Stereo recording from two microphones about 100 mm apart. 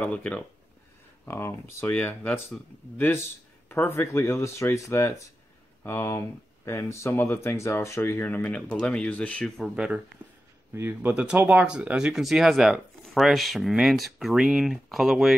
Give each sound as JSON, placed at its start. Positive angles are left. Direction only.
{"t": 0.0, "sound": "speech", "side_deg": 15}
{"t": 1.2, "sound": "speech", "side_deg": 25}
{"t": 8.5, "sound": "speech", "side_deg": 10}
{"t": 9.8, "sound": "speech", "side_deg": -10}
{"t": 10.7, "sound": "speech", "side_deg": -20}